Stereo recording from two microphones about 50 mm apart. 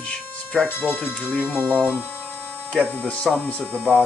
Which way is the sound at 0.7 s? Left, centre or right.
Left.